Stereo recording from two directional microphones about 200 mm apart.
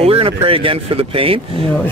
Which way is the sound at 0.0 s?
30° right (ahead or behind).